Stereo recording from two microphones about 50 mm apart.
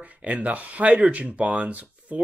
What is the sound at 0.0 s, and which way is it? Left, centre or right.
Speech, right.